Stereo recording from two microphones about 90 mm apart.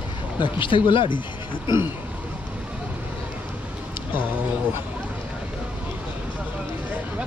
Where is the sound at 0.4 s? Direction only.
65° left (ahead or behind).